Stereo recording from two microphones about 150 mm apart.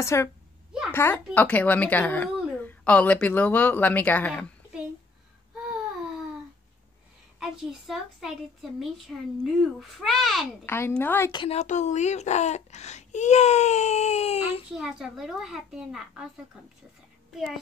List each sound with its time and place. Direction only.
0.0 s a woman's voice: 20° left (ahead or behind)
7.3 s a child's voice: centre (ahead or behind)
10.6 s a woman's voice: 15° left (ahead or behind)
11.3 s speech: 45° left (ahead or behind)
14.8 s a child's voice: 5° right (ahead or behind)